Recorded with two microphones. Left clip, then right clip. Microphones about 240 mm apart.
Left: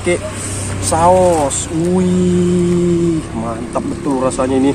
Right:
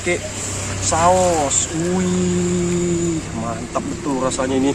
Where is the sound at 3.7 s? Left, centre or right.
Centre.